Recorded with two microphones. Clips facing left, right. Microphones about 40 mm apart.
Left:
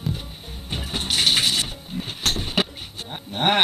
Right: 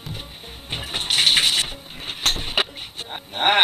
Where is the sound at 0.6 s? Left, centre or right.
Right.